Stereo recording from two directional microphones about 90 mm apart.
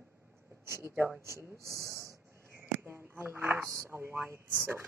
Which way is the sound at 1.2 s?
30° right (ahead or behind).